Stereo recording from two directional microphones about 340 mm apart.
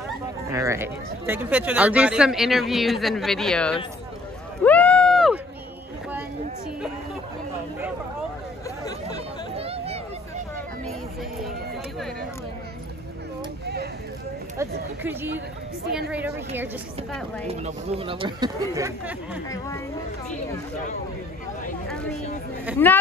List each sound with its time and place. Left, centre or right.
0.5 s speech: centre
4.6 s run: centre
9.6 s a sound: centre
14.6 s speech: centre
17.5 s speech: centre
22.7 s speech: centre